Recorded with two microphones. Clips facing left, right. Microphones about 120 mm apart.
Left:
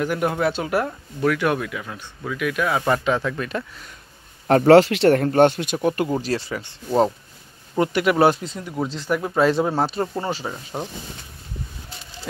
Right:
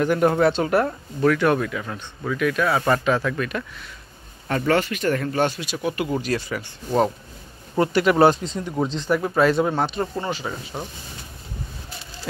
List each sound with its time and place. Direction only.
0.0 s speech: 5° left (ahead or behind)
4.5 s speech: 75° left (ahead or behind)
5.2 s speech: 55° left (ahead or behind)
6.2 s speech: 30° left (ahead or behind)
7.8 s speech: 10° left (ahead or behind)
9.4 s speech: 30° left (ahead or behind)
10.8 s speech: 45° left (ahead or behind)